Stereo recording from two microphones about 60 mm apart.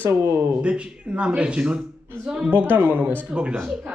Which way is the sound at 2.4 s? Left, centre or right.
Right.